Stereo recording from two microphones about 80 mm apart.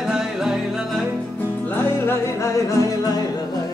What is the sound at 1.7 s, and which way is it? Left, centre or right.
Music, left.